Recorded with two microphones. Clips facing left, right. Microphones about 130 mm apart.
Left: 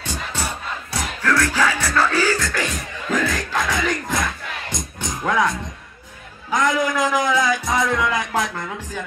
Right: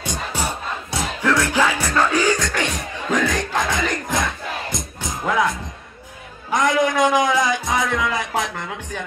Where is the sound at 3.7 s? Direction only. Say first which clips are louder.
Even; centre (ahead or behind).